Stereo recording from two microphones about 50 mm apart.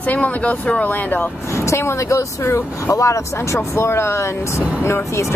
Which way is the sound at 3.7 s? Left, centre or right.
Left.